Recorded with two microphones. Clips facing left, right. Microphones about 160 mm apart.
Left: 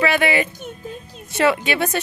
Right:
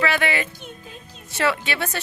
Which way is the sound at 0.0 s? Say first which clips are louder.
Left 4 dB; 15° left (ahead or behind).